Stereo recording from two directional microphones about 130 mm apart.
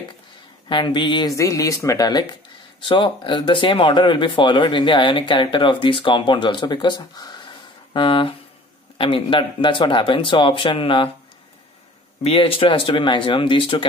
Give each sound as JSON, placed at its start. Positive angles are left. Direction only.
{"t": 0.7, "sound": "speech", "side_deg": 40}
{"t": 12.2, "sound": "speech", "side_deg": 45}